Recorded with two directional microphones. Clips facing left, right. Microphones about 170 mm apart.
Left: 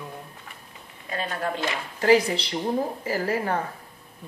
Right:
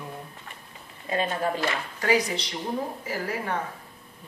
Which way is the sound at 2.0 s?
30° left (ahead or behind).